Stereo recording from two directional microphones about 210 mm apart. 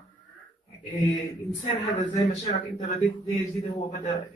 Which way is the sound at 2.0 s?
30° left (ahead or behind).